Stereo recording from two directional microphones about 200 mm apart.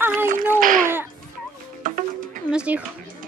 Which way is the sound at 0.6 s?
45° right (ahead or behind).